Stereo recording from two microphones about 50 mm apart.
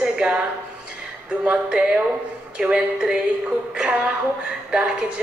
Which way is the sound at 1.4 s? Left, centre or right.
Right.